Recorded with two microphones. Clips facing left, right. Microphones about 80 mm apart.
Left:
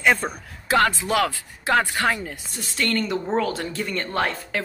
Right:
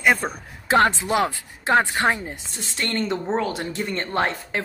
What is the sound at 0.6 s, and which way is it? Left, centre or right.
A woman's voice, right.